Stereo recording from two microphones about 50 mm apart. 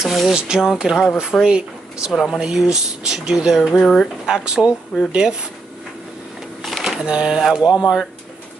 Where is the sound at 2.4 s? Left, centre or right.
Centre.